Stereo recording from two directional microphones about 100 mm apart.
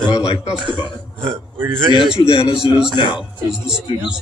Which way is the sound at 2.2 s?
70° left (ahead or behind).